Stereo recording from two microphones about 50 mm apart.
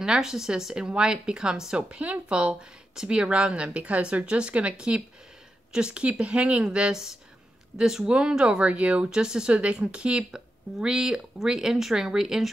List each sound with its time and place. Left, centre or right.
0.0 s speech: centre
1.8 s a woman's voice: right